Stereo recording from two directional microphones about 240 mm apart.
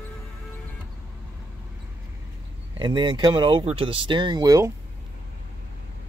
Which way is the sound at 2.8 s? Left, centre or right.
Centre.